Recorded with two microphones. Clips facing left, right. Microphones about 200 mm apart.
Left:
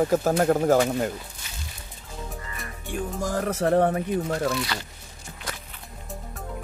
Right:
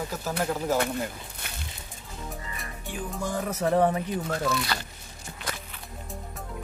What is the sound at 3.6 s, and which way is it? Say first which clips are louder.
Speech: left 2 dB; 55° left (ahead or behind).